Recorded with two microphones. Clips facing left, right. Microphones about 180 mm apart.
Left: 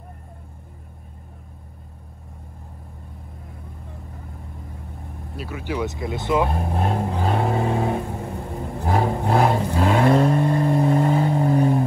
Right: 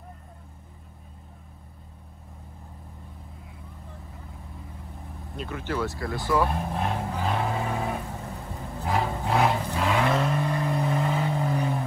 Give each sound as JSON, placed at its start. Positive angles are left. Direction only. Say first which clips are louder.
{"t": 5.3, "sound": "speech", "louder": "left 2 dB", "side_deg": 5}
{"t": 6.7, "sound": "speech", "louder": "left 5 dB", "side_deg": 45}
{"t": 7.2, "sound": "vehicle", "louder": "left 5 dB", "side_deg": 35}
{"t": 8.2, "sound": "vehicle", "louder": "left 7 dB", "side_deg": 60}
{"t": 8.8, "sound": "vehicle", "louder": "left 5 dB", "side_deg": 35}